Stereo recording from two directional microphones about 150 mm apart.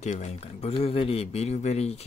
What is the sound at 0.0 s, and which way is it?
Speech, 50° left (ahead or behind).